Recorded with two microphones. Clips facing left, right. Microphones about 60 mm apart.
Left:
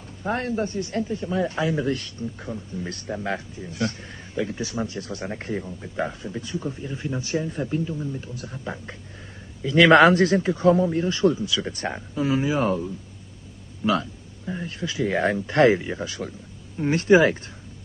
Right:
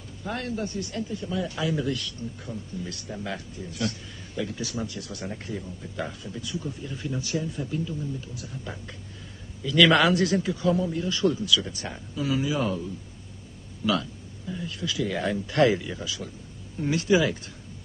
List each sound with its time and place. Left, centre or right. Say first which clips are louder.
0.2 s a man's voice: left 5 dB; left
11.7 s a man's voice: left 6 dB; left
13.8 s a man's voice: left 3 dB; left